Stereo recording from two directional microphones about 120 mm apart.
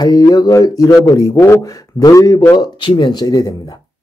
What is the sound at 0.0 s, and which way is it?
Speech, 30° left (ahead or behind).